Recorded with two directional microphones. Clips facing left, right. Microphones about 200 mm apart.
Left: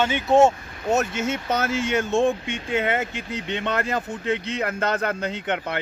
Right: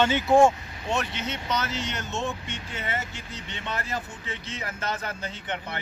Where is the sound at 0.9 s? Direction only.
45° left (ahead or behind).